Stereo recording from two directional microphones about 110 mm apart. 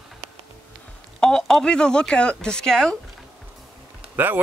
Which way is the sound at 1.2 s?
5° left (ahead or behind).